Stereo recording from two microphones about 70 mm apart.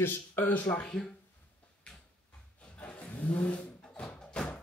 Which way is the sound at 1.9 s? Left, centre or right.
Centre.